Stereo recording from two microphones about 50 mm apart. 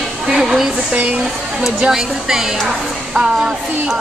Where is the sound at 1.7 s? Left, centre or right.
Centre.